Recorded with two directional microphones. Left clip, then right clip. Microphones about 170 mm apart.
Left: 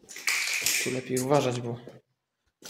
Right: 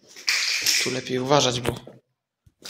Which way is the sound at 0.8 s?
5° right (ahead or behind).